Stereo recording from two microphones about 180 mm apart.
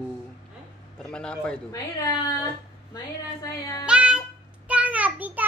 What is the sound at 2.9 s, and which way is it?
Speech, 20° left (ahead or behind).